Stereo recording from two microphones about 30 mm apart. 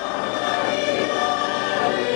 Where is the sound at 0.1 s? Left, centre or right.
Centre.